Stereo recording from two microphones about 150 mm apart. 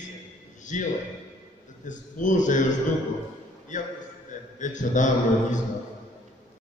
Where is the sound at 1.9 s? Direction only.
55° left (ahead or behind).